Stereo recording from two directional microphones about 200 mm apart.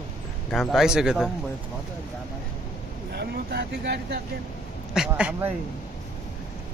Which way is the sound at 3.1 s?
55° right (ahead or behind).